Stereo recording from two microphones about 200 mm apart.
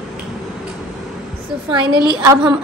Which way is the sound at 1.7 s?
25° right (ahead or behind).